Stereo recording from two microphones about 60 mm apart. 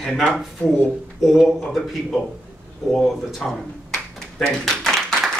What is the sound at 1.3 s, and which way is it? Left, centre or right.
Speech, centre.